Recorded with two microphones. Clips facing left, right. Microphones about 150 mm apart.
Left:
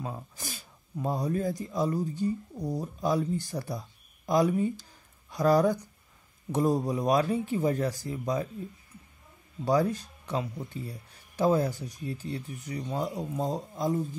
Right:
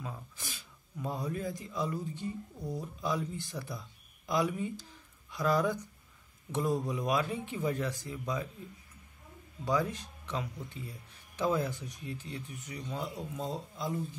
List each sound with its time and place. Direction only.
0.0 s a man's voice: 40° left (ahead or behind)
9.7 s speech: 35° left (ahead or behind)